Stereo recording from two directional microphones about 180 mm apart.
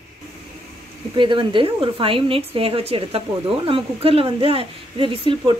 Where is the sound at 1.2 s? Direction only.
30° right (ahead or behind).